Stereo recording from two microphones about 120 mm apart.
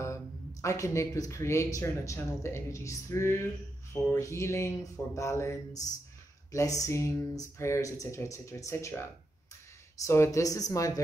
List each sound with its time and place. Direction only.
0.0 s speech: 25° left (ahead or behind)
10.0 s speech: 25° left (ahead or behind)